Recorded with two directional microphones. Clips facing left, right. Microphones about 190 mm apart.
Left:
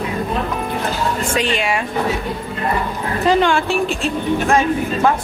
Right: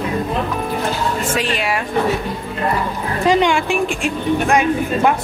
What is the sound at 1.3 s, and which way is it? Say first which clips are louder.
Speech: left 1 dB; centre (ahead or behind).